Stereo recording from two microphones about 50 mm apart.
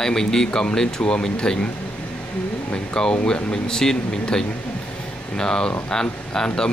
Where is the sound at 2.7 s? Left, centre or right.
Centre.